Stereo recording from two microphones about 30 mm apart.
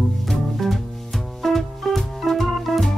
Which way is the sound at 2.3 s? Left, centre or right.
Centre.